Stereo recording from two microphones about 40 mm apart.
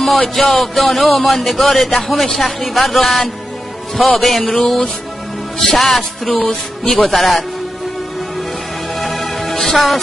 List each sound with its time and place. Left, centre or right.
0.2 s a sound: left
0.6 s a man's voice: centre
4.2 s a man's voice: centre
9.0 s music: centre
9.4 s music: centre